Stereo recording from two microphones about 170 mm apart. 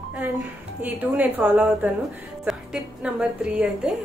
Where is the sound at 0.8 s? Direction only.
10° right (ahead or behind).